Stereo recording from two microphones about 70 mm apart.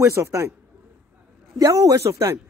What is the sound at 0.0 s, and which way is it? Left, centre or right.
Speech, right.